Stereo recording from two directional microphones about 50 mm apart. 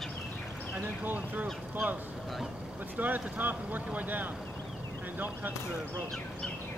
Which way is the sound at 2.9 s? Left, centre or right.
Right.